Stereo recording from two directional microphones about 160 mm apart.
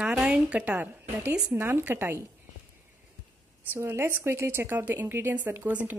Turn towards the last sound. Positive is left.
turn(degrees=-10)  # may be behind; listen again after turning